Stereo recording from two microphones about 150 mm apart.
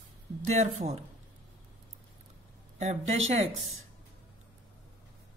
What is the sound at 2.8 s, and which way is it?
Speech, 50° right (ahead or behind).